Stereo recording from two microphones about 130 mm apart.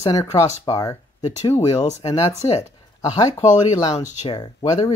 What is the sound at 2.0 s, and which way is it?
Speech, 25° left (ahead or behind).